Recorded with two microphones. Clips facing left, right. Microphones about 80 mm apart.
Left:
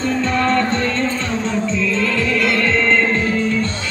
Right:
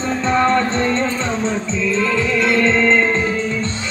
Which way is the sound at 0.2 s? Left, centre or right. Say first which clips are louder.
Right 4 dB; right.